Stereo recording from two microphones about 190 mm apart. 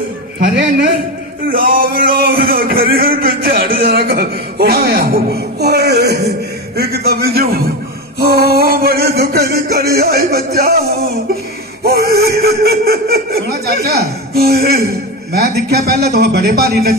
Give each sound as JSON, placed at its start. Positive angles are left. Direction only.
{"t": 1.5, "sound": "a sound", "side_deg": -50}
{"t": 6.8, "sound": "speech", "side_deg": -55}
{"t": 11.8, "sound": "speech", "side_deg": -55}